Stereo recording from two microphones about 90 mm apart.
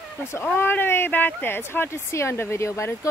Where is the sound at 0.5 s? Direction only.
25° left (ahead or behind).